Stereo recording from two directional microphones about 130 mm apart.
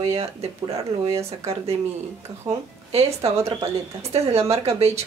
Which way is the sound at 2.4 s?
50° right (ahead or behind).